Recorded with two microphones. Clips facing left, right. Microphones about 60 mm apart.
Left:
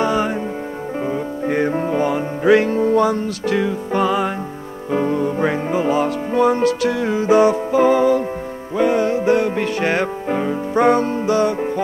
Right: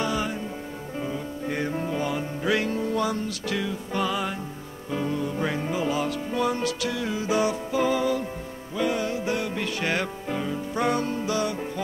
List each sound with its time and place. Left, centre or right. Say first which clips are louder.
0.0 s music: left 9 dB; left